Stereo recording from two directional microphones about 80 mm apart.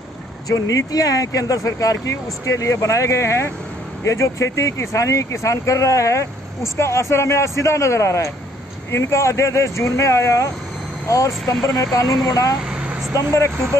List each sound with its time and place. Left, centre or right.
0.5 s speech: left
12.6 s vehicle: centre
13.1 s speech: left